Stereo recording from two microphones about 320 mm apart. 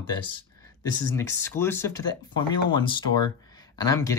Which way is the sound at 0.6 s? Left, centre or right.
Centre.